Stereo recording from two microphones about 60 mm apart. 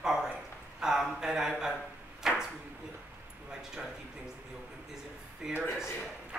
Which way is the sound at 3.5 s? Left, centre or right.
Centre.